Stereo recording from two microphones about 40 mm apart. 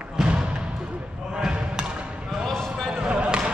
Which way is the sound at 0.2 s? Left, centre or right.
Centre.